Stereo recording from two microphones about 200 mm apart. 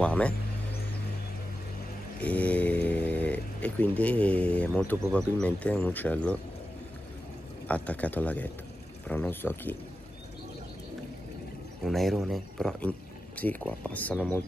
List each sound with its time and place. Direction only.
0.0 s a sound: 5° left (ahead or behind)
2.1 s speech: 5° left (ahead or behind)
7.6 s speech: 5° left (ahead or behind)
11.8 s speech: centre (ahead or behind)